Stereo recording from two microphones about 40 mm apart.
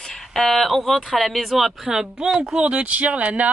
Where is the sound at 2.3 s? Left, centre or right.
Right.